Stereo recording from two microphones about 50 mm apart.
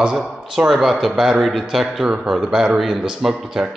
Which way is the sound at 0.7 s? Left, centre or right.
Centre.